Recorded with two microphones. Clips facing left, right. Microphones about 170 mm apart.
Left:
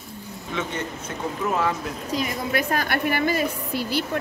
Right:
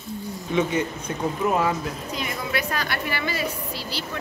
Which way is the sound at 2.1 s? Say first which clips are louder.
Left 5 dB; 50° left (ahead or behind).